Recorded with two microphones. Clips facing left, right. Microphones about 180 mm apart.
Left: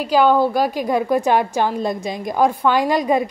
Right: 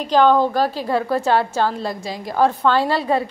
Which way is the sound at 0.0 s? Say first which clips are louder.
Even; 10° left (ahead or behind).